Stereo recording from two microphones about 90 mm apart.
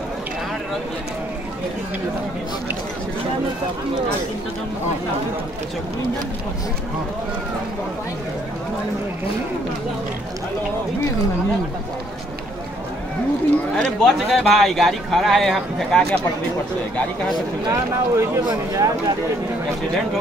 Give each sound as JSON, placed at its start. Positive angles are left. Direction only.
{"t": 13.7, "sound": "speech", "side_deg": 0}
{"t": 17.3, "sound": "speech", "side_deg": -35}